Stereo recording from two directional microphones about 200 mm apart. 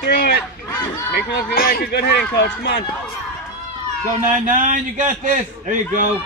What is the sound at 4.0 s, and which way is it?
A man's voice, 40° right (ahead or behind).